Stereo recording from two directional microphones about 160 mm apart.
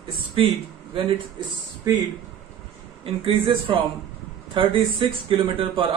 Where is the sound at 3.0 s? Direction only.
35° right (ahead or behind).